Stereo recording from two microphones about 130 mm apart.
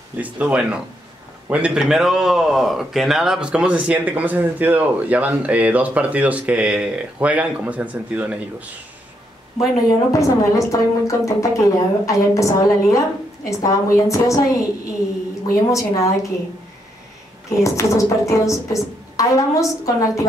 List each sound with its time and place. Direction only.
0.2 s speech: 10° right (ahead or behind)
9.8 s a woman's voice: 25° left (ahead or behind)
15.7 s a woman's voice: 25° left (ahead or behind)
17.5 s a woman's voice: 25° left (ahead or behind)